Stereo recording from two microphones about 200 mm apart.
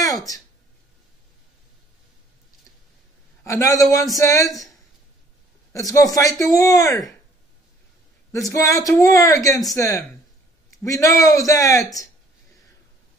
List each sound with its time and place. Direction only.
3.4 s speech: 15° left (ahead or behind)
5.7 s speech: 15° left (ahead or behind)
8.3 s speech: 15° left (ahead or behind)